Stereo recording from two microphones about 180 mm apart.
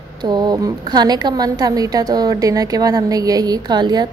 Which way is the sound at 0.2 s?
25° right (ahead or behind).